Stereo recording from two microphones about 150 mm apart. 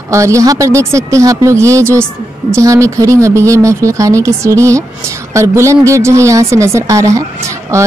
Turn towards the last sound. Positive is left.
turn(degrees=-20)  # may be behind; listen again after turning